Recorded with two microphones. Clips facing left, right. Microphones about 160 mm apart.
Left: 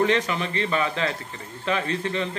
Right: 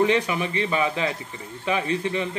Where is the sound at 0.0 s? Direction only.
15° right (ahead or behind).